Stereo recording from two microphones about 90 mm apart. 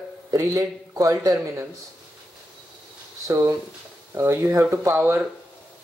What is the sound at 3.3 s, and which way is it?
Speech, 35° right (ahead or behind).